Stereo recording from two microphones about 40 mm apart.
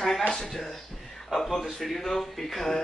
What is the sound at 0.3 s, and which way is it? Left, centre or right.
Speech, centre.